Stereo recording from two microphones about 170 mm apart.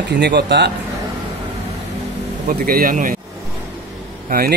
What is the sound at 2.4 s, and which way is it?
Speech, 60° right (ahead or behind).